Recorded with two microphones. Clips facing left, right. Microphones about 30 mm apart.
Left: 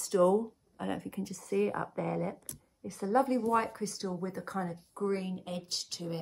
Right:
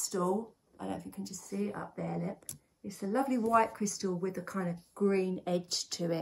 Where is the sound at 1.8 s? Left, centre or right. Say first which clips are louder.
Left 4 dB; left.